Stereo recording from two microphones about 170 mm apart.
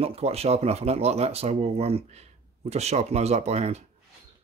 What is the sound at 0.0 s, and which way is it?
Speech, 35° right (ahead or behind).